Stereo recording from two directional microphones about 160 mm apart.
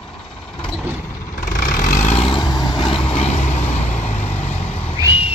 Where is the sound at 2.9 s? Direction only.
35° left (ahead or behind).